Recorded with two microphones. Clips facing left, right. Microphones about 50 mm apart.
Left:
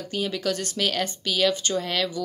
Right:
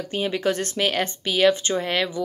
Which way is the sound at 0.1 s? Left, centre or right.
Right.